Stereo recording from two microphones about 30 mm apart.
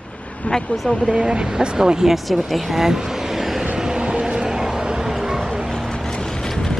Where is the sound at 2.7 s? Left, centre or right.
Centre.